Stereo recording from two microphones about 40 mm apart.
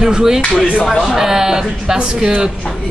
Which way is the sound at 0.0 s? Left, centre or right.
Centre.